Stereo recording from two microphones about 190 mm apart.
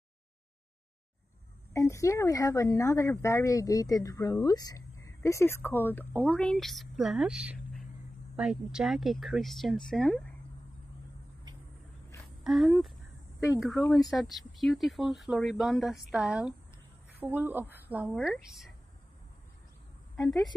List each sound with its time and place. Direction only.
1.7 s speech: 15° left (ahead or behind)
12.4 s speech: centre (ahead or behind)
14.1 s a woman's voice: centre (ahead or behind)
20.2 s a woman's voice: centre (ahead or behind)